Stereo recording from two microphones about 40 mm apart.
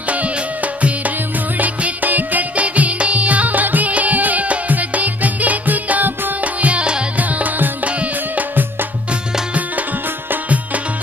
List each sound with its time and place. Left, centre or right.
0.1 s music: right
6.4 s music: right
7.2 s music: right
7.8 s music: right